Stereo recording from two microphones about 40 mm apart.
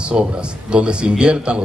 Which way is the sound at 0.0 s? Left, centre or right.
Right.